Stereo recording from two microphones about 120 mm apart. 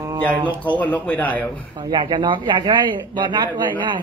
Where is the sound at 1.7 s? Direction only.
40° right (ahead or behind).